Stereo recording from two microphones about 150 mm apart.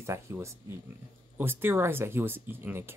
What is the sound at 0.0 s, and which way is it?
Speech, 20° right (ahead or behind).